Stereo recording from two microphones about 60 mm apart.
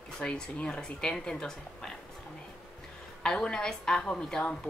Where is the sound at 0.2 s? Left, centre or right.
Centre.